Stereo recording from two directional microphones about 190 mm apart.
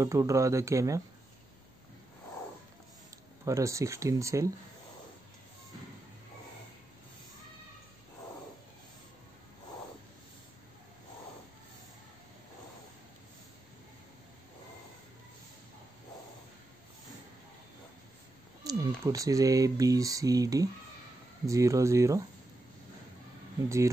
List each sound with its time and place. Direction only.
0.0 s speech: 15° right (ahead or behind)
3.4 s speech: 15° right (ahead or behind)
18.6 s speech: 20° right (ahead or behind)